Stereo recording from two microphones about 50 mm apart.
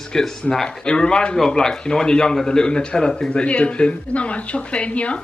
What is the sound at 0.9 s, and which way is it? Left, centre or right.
Speech, centre.